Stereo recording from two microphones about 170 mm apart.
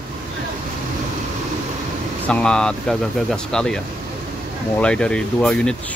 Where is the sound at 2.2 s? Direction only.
5° left (ahead or behind).